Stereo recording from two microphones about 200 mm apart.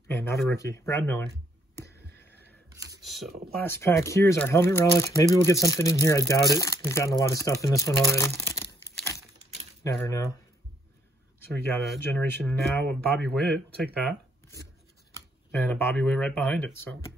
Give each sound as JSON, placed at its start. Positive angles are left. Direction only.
{"t": 0.1, "sound": "speech", "side_deg": 10}
{"t": 2.0, "sound": "a sound", "side_deg": 10}
{"t": 2.4, "sound": "a sound", "side_deg": -15}
{"t": 3.0, "sound": "computer keyboard", "side_deg": 0}
{"t": 3.5, "sound": "speech", "side_deg": 10}
{"t": 9.8, "sound": "speech", "side_deg": 15}
{"t": 12.2, "sound": "speech", "side_deg": 10}
{"t": 13.4, "sound": "speech", "side_deg": -55}
{"t": 15.5, "sound": "speech", "side_deg": 5}